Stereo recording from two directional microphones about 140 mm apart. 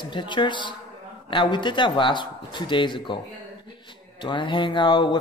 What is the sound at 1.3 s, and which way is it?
Speech, 35° left (ahead or behind).